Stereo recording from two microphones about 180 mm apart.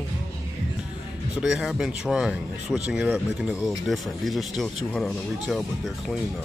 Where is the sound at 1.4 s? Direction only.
5° right (ahead or behind).